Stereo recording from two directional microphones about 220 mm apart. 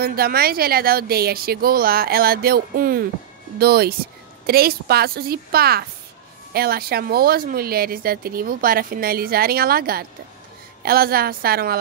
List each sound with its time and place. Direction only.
0.0 s speech: 45° right (ahead or behind)